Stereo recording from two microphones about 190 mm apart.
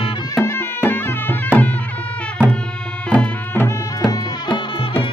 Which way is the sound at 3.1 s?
10° left (ahead or behind).